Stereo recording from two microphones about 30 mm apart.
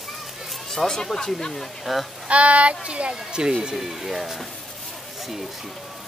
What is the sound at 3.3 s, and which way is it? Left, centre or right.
Speech, right.